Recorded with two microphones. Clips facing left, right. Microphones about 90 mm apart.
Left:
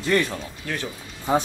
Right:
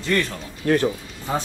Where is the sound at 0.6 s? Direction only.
40° right (ahead or behind).